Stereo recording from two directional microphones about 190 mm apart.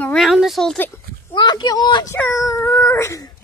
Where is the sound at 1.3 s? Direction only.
20° left (ahead or behind).